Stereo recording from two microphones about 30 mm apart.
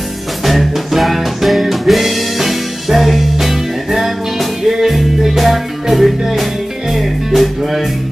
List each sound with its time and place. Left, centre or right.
0.5 s music: centre